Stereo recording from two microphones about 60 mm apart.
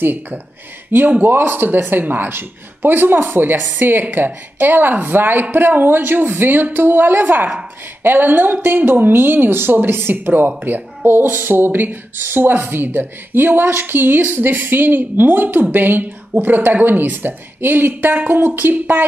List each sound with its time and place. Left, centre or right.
0.0 s speech: right